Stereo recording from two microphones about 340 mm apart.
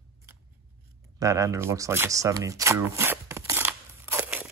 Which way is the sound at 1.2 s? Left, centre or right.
Centre.